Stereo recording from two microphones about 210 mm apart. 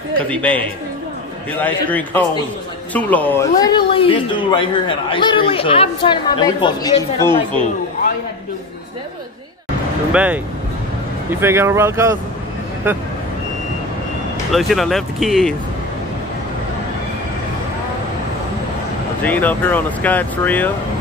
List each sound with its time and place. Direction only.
0.3 s speech: 5° left (ahead or behind)
10.1 s speech: 5° right (ahead or behind)
14.5 s speech: centre (ahead or behind)
19.2 s speech: 10° left (ahead or behind)